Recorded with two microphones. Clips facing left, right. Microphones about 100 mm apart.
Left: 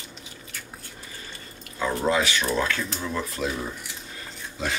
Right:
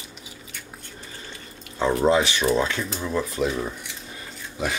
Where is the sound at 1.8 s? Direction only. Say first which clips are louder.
Right 4 dB; 25° right (ahead or behind).